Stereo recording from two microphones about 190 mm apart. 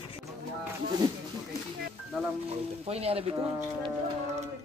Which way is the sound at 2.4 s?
30° right (ahead or behind).